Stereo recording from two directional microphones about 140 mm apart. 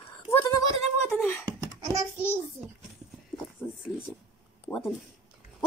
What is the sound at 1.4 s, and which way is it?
Babbling, 25° right (ahead or behind).